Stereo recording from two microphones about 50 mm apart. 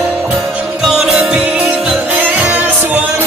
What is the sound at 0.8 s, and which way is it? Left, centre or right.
Music, centre.